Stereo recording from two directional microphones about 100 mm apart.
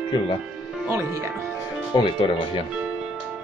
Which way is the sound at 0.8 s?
30° right (ahead or behind).